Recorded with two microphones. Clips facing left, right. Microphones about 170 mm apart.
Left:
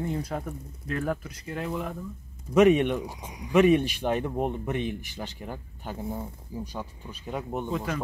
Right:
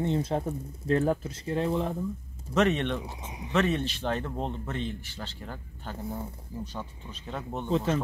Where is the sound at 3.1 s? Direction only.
25° right (ahead or behind).